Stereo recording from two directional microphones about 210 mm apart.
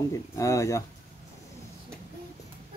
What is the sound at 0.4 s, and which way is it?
Speech, 15° left (ahead or behind).